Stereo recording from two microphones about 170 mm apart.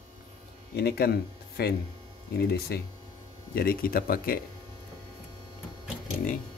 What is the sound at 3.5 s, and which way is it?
Speech, 60° left (ahead or behind).